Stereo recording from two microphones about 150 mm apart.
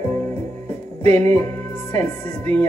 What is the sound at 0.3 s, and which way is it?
Music, 50° right (ahead or behind).